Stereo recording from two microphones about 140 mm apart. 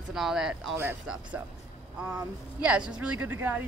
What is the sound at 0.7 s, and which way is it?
Speech, 15° right (ahead or behind).